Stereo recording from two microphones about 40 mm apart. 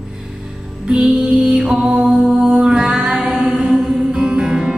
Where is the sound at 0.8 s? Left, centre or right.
Right.